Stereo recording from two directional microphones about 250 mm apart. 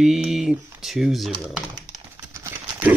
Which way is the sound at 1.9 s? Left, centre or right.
Centre.